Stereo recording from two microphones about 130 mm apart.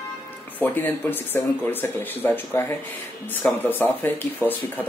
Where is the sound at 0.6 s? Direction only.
15° left (ahead or behind).